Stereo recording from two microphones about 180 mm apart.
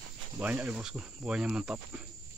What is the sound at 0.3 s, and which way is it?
Speech, 10° right (ahead or behind).